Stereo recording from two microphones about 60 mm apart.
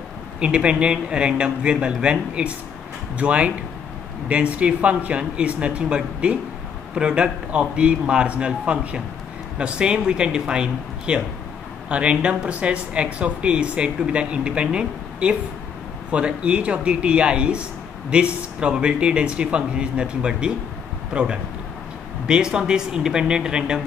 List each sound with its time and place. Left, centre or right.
0.4 s speech: centre